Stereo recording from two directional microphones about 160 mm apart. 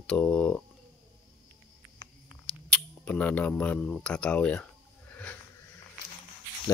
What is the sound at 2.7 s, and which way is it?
Speech, 10° left (ahead or behind).